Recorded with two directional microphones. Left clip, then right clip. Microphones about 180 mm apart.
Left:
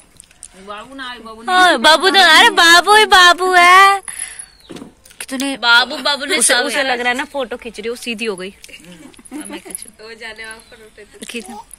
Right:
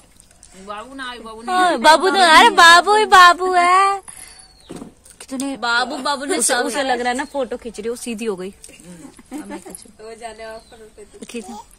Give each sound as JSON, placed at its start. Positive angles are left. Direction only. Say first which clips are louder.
{"t": 0.7, "sound": "speech", "louder": "left 1 dB", "side_deg": -40}
{"t": 1.5, "sound": "speech", "louder": "left 3 dB", "side_deg": -5}
{"t": 5.1, "sound": "a sound", "louder": "left 5 dB", "side_deg": 0}
{"t": 5.6, "sound": "speech", "louder": "left 7 dB", "side_deg": -40}
{"t": 6.6, "sound": "speech", "louder": "left 3 dB", "side_deg": -20}
{"t": 9.3, "sound": "dog", "louder": "left 2 dB", "side_deg": -25}
{"t": 10.0, "sound": "speech", "louder": "left 2 dB", "side_deg": -50}
{"t": 11.1, "sound": "speech", "louder": "left 3 dB", "side_deg": -10}